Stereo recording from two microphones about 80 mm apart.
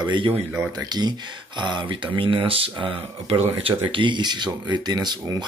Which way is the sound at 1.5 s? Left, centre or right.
Right.